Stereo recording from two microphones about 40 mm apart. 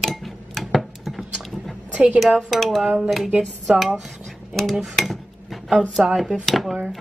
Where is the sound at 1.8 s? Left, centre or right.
Right.